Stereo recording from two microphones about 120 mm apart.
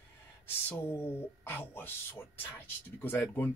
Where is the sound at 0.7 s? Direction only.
15° left (ahead or behind).